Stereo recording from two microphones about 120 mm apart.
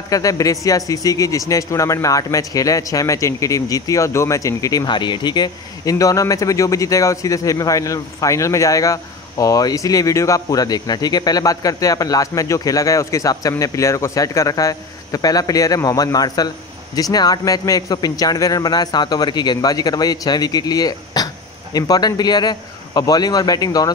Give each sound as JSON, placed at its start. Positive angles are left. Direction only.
{"t": 0.1, "sound": "a man's voice", "side_deg": 30}